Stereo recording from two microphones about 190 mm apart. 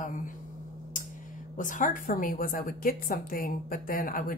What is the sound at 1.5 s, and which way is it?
Speech, 45° left (ahead or behind).